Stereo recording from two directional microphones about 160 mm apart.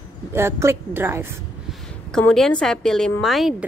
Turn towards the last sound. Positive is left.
turn(degrees=0)  # may be behind; listen again after turning